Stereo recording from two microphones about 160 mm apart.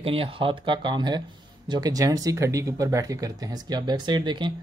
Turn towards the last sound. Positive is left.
turn(degrees=-30)  # may be behind; listen again after turning